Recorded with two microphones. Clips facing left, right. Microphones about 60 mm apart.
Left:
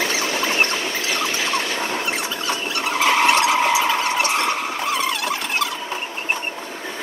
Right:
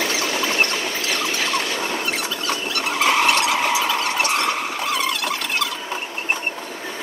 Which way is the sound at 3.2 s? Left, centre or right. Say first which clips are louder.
Left 2 dB; left.